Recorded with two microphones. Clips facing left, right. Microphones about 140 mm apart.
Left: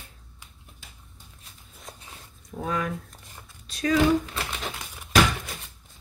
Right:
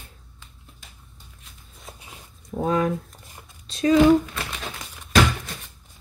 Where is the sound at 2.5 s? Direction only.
30° right (ahead or behind).